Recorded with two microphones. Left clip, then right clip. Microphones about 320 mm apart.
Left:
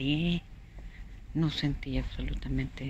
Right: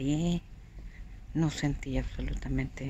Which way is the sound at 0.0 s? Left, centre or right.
Right.